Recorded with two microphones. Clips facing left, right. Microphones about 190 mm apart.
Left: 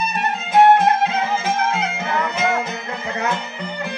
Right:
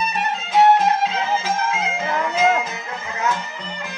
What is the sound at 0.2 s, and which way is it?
Music, 55° left (ahead or behind).